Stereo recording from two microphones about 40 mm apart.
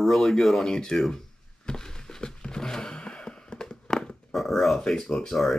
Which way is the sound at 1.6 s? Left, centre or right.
Centre.